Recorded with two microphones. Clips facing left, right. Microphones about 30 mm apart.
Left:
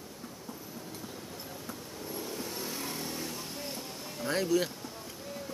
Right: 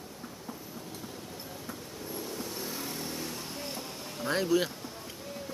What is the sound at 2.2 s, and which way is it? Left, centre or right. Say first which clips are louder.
Vehicle: even; centre.